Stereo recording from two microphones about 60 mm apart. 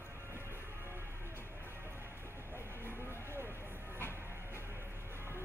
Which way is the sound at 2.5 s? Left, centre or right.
Left.